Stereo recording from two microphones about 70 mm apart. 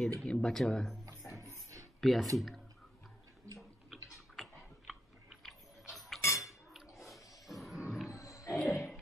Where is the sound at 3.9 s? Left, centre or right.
Centre.